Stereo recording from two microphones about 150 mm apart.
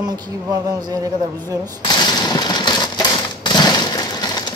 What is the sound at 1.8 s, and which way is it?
Typewriter, 30° left (ahead or behind).